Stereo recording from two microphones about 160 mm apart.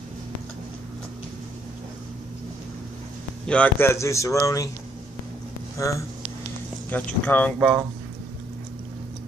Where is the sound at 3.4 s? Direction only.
10° left (ahead or behind).